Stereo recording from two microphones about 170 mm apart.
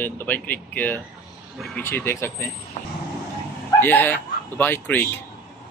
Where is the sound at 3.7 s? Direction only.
10° left (ahead or behind).